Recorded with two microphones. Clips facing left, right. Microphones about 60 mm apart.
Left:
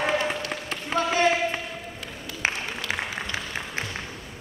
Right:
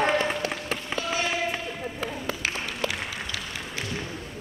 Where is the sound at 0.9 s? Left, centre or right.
Left.